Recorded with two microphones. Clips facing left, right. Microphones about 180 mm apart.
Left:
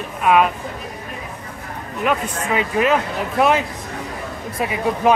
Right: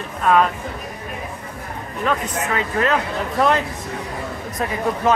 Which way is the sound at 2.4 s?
15° left (ahead or behind).